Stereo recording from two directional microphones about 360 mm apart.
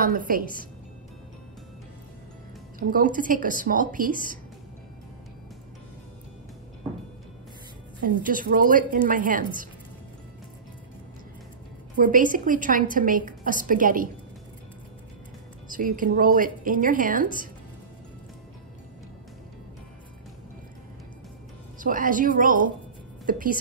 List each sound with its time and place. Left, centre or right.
0.0 s a woman's voice: right
2.9 s a woman's voice: right
8.0 s a woman's voice: right
12.0 s a woman's voice: right
15.7 s a woman's voice: right
21.7 s a woman's voice: right